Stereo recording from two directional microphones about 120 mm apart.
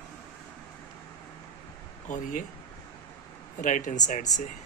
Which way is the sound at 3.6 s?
90° left.